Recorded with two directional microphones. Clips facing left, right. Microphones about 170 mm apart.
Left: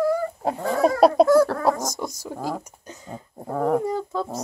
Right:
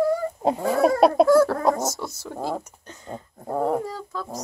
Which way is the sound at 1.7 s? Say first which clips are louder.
Right 1 dB; 15° left (ahead or behind).